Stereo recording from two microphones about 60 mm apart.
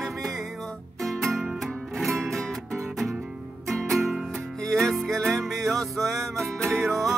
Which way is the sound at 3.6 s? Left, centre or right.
Centre.